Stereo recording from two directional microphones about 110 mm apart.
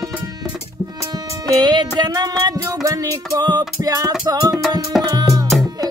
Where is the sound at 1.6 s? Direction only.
40° right (ahead or behind).